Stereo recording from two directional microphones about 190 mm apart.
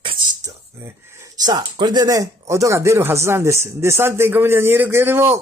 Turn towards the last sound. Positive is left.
turn(degrees=-10)  # may be behind; listen again after turning